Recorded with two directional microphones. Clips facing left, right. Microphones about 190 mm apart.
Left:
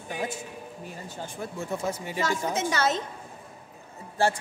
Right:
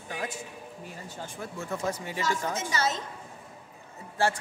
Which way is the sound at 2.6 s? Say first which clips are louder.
Left 4 dB; 65° left (ahead or behind).